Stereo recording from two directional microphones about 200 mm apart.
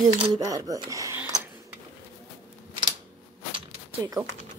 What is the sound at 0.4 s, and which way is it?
Speech, 15° right (ahead or behind).